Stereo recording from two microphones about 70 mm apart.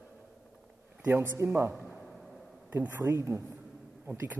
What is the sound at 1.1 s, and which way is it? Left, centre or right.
Speech, right.